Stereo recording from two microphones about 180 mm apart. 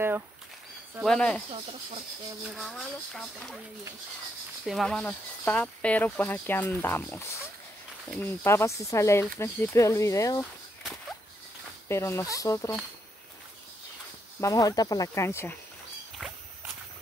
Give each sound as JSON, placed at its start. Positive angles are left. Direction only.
{"t": 1.0, "sound": "speech", "side_deg": 5}
{"t": 2.5, "sound": "speech", "side_deg": 0}
{"t": 4.6, "sound": "speech", "side_deg": 0}
{"t": 11.9, "sound": "speech", "side_deg": 15}
{"t": 14.4, "sound": "speech", "side_deg": 20}